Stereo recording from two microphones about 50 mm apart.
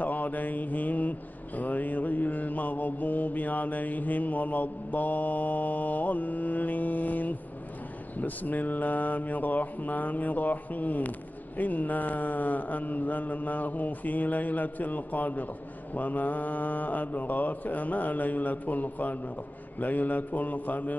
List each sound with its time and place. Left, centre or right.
0.0 s mantra: left